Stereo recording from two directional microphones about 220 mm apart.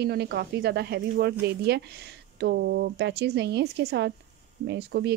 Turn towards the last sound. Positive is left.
turn(degrees=-50)  # may be behind; listen again after turning